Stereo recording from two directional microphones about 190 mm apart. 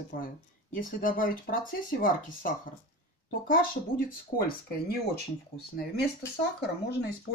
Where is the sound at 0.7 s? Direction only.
45° left (ahead or behind).